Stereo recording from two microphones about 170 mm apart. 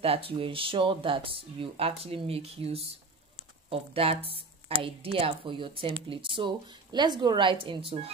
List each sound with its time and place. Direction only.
0.0 s speech: 35° right (ahead or behind)